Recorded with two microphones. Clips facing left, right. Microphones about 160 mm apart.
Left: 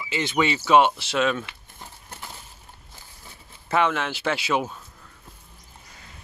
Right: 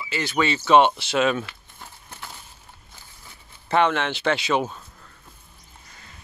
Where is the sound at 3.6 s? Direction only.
5° left (ahead or behind).